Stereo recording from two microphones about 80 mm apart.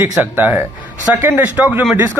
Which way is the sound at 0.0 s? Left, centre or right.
Right.